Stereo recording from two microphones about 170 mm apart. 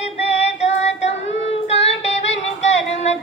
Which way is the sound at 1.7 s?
40° left (ahead or behind).